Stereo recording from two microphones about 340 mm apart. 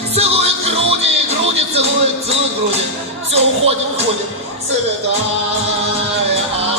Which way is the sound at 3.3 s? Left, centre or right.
Centre.